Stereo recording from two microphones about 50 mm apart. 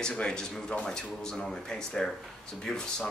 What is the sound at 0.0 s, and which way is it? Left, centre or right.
Speech, centre.